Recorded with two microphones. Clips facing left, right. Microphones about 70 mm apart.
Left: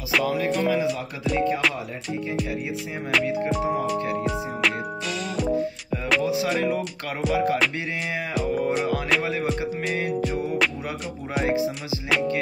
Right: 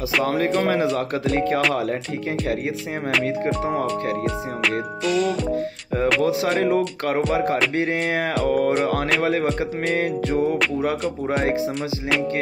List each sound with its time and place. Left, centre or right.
0.2 s speech: right
3.3 s speech: right
5.0 s music: centre
6.2 s speech: right
8.5 s speech: right
11.4 s speech: right